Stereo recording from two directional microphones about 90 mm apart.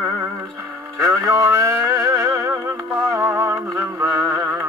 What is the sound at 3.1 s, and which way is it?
Music, 25° right (ahead or behind).